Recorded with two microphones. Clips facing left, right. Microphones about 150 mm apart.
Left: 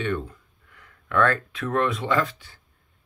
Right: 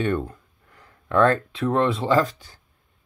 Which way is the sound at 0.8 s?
30° right (ahead or behind).